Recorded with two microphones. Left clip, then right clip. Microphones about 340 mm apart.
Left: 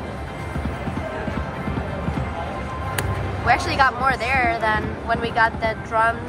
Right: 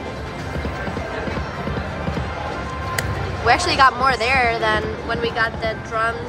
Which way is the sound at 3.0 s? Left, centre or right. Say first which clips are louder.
Right 3 dB; centre.